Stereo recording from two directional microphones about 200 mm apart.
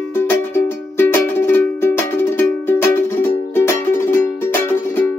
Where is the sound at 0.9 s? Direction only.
10° left (ahead or behind).